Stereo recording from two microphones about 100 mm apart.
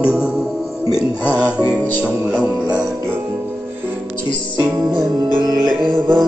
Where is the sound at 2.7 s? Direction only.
10° right (ahead or behind).